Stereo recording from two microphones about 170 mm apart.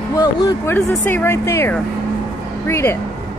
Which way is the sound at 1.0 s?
15° left (ahead or behind).